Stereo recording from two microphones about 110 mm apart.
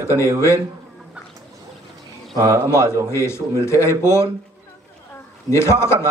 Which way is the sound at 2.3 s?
30° right (ahead or behind).